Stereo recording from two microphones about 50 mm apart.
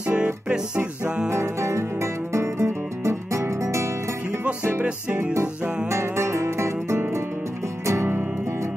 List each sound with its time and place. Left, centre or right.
0.0 s music: centre
1.3 s music: right
4.8 s music: right
5.2 s music: right
5.6 s music: centre
5.9 s music: right